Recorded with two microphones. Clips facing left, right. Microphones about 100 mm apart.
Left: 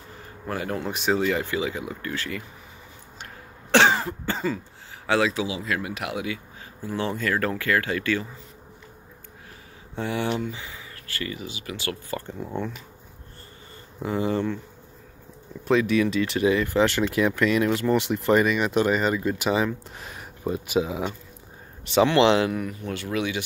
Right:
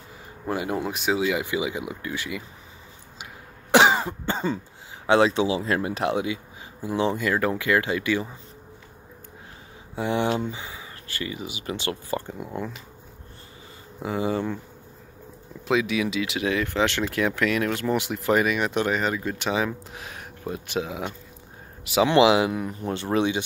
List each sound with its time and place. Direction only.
0.5 s speech: 15° right (ahead or behind)
0.8 s speech: 5° right (ahead or behind)
3.7 s cough: 15° right (ahead or behind)
5.0 s speech: 25° right (ahead or behind)
9.9 s speech: 20° right (ahead or behind)
12.4 s speech: 5° right (ahead or behind)
14.0 s speech: 15° right (ahead or behind)
15.7 s speech: 5° right (ahead or behind)
22.7 s speech: 30° right (ahead or behind)